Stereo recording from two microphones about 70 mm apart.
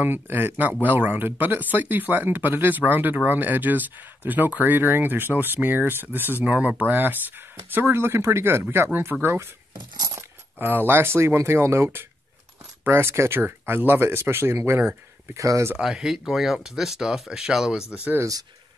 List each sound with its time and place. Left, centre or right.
0.0 s speech: right
9.8 s keys jangling: right
10.7 s speech: right
15.3 s speech: right
15.8 s speech: centre